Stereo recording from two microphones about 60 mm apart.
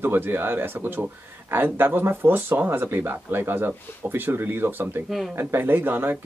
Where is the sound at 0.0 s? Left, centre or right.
Right.